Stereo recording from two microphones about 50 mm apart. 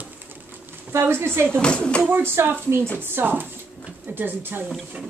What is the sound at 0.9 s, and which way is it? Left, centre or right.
Speech, right.